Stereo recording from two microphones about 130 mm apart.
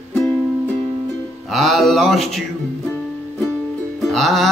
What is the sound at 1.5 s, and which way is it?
Speech, centre (ahead or behind).